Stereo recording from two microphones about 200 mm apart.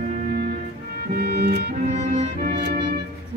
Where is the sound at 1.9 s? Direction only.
35° right (ahead or behind).